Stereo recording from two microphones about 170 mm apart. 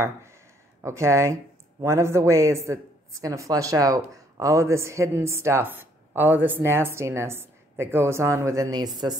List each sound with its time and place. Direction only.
0.8 s speech: 15° right (ahead or behind)